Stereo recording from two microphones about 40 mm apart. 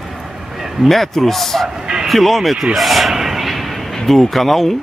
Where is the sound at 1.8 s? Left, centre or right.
Centre.